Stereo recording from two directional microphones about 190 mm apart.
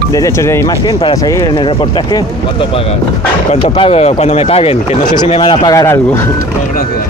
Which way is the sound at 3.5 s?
30° left (ahead or behind).